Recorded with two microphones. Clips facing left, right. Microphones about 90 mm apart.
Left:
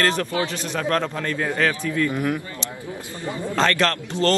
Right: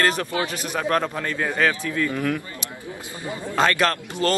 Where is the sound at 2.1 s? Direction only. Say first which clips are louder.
Left 1 dB; 20° left (ahead or behind).